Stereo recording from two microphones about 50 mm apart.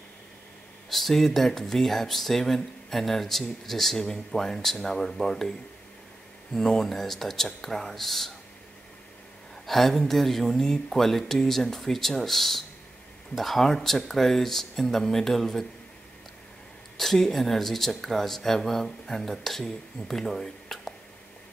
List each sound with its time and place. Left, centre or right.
0.8 s speech: centre
6.5 s speech: centre
9.7 s speech: centre
16.9 s speech: centre